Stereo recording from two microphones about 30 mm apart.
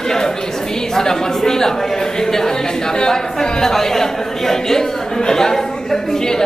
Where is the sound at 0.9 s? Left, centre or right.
Centre.